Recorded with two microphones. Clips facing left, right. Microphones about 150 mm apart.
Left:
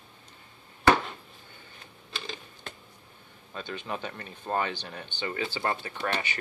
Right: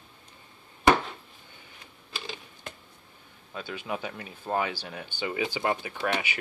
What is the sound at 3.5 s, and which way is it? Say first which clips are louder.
Speech: right 1 dB; 5° right (ahead or behind).